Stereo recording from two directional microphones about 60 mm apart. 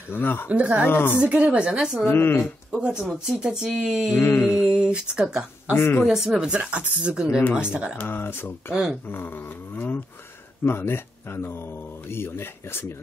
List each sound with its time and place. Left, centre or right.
0.1 s speech: left
0.5 s speech: right
0.8 s speech: left
1.2 s speech: centre
2.0 s speech: left
2.8 s speech: centre
4.1 s mantra: left
4.6 s speech: centre
5.7 s speech: left
6.0 s speech: centre
8.0 s speech: left